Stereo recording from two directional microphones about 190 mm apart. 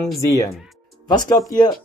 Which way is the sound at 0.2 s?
15° left (ahead or behind).